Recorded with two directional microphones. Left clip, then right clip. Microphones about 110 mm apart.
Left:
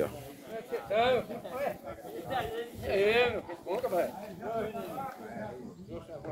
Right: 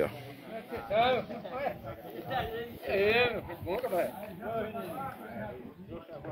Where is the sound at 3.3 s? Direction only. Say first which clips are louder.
Even; 10° right (ahead or behind).